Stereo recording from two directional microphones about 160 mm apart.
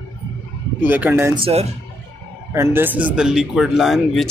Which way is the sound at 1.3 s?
35° right (ahead or behind).